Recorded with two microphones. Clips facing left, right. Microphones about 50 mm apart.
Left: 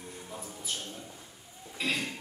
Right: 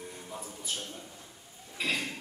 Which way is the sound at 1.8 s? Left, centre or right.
Centre.